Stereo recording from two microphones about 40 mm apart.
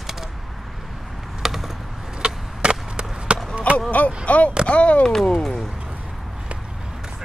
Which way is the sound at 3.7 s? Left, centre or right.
Left.